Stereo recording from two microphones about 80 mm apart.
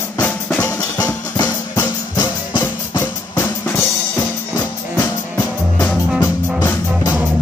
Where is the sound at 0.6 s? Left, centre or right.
Left.